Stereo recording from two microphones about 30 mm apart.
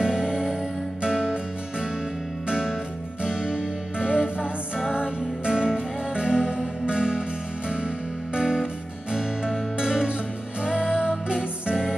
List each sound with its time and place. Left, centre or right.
0.0 s music: right
3.3 s music: centre
8.4 s music: right
9.8 s music: right
11.2 s music: right